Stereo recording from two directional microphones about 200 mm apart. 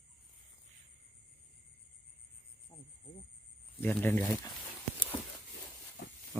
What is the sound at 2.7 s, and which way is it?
Cricket, 30° left (ahead or behind).